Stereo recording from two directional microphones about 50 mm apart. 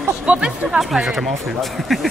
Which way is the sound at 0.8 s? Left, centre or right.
Centre.